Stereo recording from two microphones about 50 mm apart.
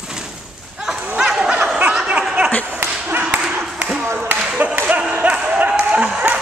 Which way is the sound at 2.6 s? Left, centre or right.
Right.